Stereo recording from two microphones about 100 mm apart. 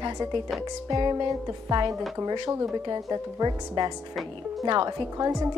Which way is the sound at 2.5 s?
35° right (ahead or behind).